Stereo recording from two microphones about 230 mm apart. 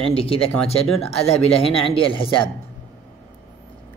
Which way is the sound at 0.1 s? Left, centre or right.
Left.